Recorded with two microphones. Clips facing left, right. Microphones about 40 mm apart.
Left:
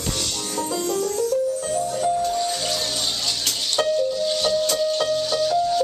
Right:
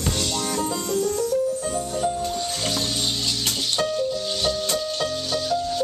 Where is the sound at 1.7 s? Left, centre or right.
Centre.